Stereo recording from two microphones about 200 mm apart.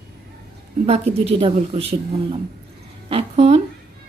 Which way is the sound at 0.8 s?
30° right (ahead or behind).